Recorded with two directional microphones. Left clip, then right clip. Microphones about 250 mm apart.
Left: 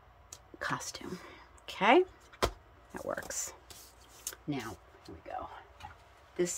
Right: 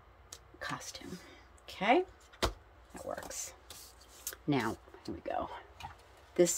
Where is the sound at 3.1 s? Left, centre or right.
Centre.